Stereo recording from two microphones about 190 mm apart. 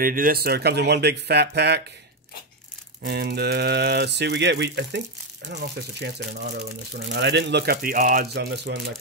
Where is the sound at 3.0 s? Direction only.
60° right (ahead or behind).